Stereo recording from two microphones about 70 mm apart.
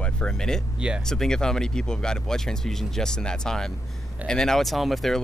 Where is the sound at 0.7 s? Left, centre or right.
Centre.